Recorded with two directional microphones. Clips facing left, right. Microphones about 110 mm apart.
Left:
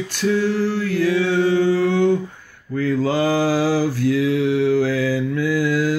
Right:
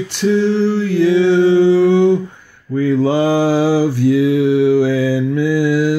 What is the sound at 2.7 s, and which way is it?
Mantra, 20° right (ahead or behind).